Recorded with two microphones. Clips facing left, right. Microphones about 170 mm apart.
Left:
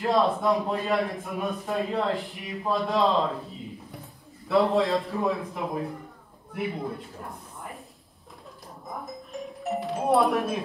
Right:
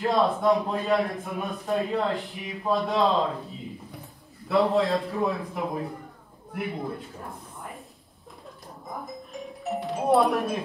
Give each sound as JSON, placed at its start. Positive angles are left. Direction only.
{"t": 0.0, "sound": "a man's voice", "side_deg": 0}
{"t": 4.5, "sound": "a man's voice", "side_deg": 0}
{"t": 8.9, "sound": "music", "side_deg": 0}